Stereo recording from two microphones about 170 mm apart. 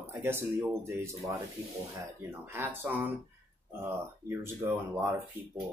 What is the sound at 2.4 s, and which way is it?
Speech, 15° right (ahead or behind).